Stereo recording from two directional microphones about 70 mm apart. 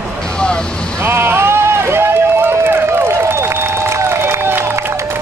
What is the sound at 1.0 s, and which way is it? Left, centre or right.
Run, right.